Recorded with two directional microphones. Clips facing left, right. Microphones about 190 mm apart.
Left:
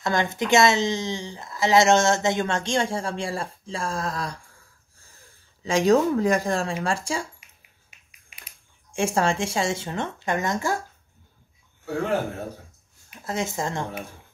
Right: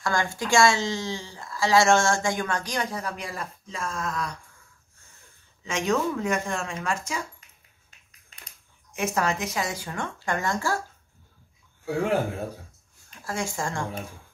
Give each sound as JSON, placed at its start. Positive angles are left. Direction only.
{"t": 0.0, "sound": "speech", "side_deg": 20}
{"t": 7.9, "sound": "a sound", "side_deg": 10}
{"t": 8.9, "sound": "speech", "side_deg": 30}
{"t": 11.8, "sound": "speech", "side_deg": -10}
{"t": 13.1, "sound": "speech", "side_deg": 20}